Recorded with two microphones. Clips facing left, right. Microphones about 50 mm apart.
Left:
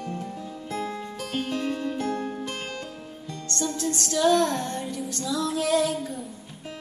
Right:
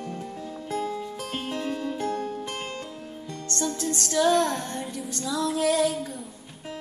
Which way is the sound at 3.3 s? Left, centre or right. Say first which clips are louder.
Even; right.